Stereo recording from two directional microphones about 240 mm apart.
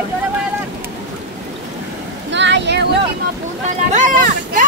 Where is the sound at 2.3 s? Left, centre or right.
Right.